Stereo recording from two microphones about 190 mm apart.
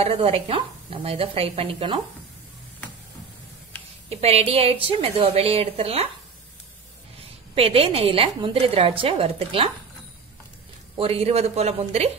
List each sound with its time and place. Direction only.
0.0 s a woman's voice: 30° right (ahead or behind)
4.1 s a woman's voice: 30° right (ahead or behind)
7.2 s a woman's voice: 30° right (ahead or behind)
11.0 s a woman's voice: 30° right (ahead or behind)